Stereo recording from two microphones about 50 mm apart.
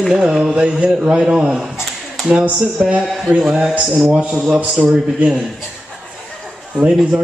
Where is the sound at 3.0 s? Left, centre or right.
Centre.